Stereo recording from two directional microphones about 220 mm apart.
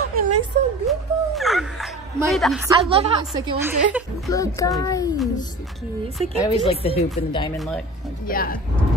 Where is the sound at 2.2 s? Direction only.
Centre (ahead or behind).